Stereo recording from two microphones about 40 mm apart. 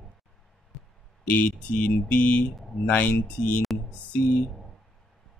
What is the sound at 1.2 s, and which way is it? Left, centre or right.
Speech, left.